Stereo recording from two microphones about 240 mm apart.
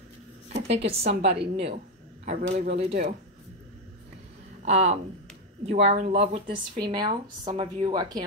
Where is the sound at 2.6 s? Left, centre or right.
Right.